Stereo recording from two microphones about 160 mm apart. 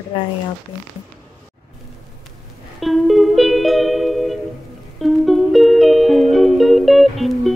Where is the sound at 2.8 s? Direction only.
Centre (ahead or behind).